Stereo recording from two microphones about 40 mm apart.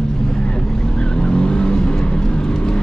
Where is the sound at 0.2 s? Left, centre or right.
Centre.